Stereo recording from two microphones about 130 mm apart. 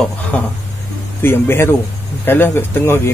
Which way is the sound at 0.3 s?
10° left (ahead or behind).